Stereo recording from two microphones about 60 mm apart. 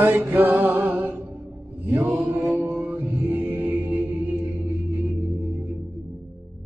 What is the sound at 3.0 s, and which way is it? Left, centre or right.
Music, right.